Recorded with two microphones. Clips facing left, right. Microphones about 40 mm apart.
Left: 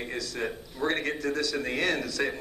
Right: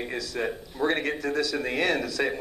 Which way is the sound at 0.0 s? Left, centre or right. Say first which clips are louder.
Right 3 dB; centre.